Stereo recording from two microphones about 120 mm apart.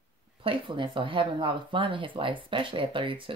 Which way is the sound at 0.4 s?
45° right (ahead or behind).